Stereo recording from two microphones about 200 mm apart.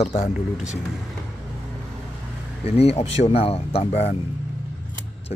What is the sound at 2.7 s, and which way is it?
A man's voice, 30° left (ahead or behind).